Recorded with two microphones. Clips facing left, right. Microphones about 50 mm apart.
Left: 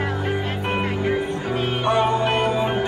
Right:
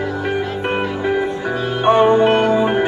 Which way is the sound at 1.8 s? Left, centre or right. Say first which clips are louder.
Right 9 dB; right.